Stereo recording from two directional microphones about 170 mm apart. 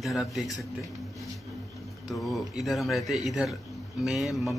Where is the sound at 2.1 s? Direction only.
Centre (ahead or behind).